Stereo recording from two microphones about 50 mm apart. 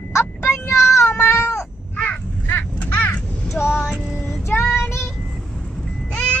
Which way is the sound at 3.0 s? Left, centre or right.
Left.